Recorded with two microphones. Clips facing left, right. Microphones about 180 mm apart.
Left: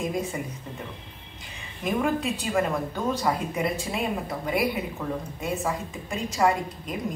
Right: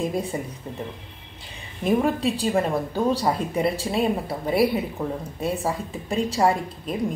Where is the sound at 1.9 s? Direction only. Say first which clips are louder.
Right 4 dB; 35° right (ahead or behind).